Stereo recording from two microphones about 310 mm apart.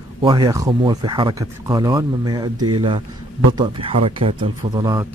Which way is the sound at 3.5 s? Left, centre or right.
Centre.